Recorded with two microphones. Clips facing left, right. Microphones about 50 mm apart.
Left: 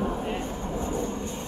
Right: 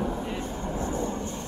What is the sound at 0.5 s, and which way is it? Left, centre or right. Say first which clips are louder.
Vehicle: even; centre.